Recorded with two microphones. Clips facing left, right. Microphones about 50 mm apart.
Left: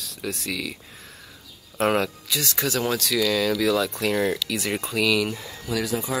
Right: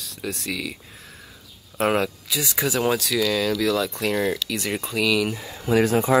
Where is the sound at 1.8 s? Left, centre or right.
Centre.